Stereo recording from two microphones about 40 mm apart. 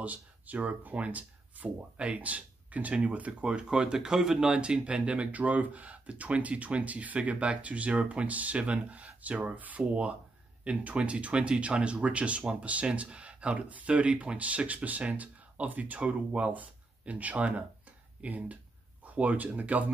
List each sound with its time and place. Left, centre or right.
0.0 s speech: right
9.6 s speech: right
10.6 s speech: right